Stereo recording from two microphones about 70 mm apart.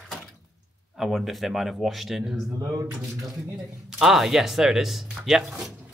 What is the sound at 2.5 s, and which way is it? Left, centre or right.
Speech, right.